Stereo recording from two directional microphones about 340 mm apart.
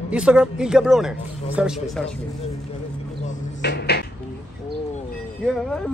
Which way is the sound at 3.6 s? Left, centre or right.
Left.